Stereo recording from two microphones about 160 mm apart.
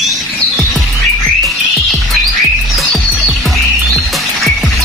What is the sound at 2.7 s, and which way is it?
Music, centre (ahead or behind).